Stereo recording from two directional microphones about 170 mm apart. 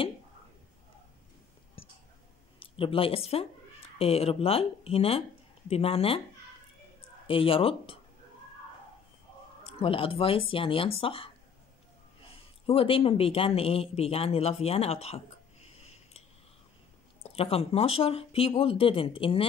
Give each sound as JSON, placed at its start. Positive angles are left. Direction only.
{"t": 1.8, "sound": "whispering", "side_deg": 35}
{"t": 2.6, "sound": "speech", "side_deg": 30}
{"t": 7.2, "sound": "speech", "side_deg": 35}
{"t": 9.7, "sound": "speech", "side_deg": 35}
{"t": 12.6, "sound": "speech", "side_deg": 35}
{"t": 15.8, "sound": "scissors", "side_deg": 40}
{"t": 17.2, "sound": "speech", "side_deg": 35}